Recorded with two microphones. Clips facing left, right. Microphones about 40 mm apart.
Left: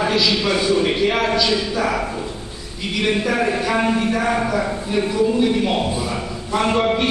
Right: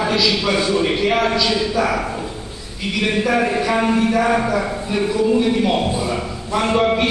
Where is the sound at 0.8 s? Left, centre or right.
Centre.